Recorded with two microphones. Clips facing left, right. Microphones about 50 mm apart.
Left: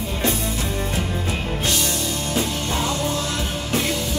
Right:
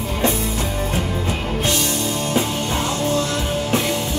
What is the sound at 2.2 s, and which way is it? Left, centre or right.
Music, right.